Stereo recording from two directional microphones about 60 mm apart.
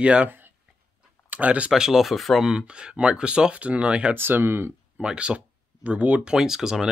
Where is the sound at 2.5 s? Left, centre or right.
Centre.